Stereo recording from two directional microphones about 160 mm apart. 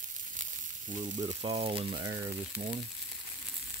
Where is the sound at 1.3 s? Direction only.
40° right (ahead or behind).